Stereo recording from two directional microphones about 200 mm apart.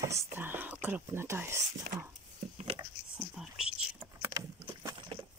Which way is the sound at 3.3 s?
5° right (ahead or behind).